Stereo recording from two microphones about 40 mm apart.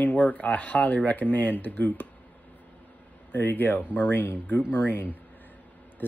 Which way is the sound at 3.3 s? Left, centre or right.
Left.